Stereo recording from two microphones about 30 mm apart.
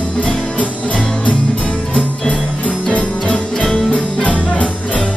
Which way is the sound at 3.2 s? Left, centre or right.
Left.